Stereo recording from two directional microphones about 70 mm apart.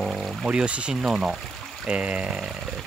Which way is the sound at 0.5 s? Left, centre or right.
Centre.